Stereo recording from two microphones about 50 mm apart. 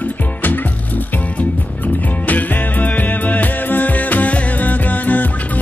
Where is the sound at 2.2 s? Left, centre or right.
Left.